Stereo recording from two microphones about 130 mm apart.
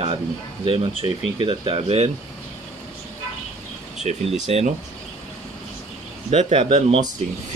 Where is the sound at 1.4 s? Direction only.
40° right (ahead or behind).